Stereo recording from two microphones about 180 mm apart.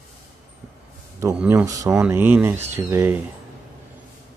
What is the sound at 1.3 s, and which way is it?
Speech, 5° right (ahead or behind).